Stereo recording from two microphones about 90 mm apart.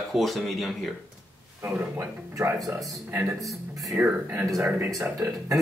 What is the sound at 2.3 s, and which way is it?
Speech, 40° right (ahead or behind).